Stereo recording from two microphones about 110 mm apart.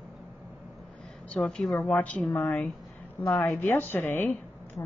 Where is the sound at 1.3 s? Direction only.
5° left (ahead or behind).